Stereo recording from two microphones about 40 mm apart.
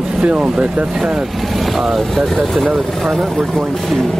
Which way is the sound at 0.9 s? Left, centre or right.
Centre.